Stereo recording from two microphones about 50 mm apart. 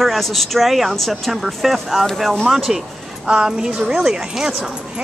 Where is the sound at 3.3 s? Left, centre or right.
Centre.